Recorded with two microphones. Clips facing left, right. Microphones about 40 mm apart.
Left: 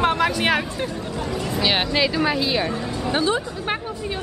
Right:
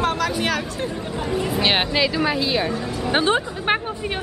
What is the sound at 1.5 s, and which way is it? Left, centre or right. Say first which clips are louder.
Speech: right 1 dB; centre.